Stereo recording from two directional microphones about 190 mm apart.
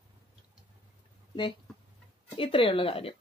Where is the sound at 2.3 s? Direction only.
30° left (ahead or behind).